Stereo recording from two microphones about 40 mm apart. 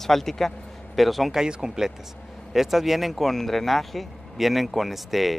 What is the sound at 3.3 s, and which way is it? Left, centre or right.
Speech, centre.